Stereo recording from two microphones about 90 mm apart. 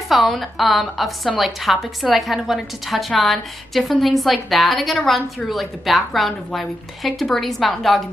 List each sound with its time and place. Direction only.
0.1 s a woman's voice: centre (ahead or behind)